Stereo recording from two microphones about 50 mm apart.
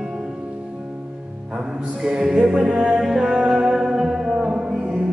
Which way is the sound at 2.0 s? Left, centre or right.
Centre.